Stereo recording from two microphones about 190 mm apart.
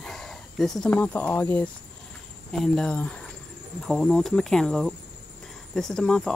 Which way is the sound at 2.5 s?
5° left (ahead or behind).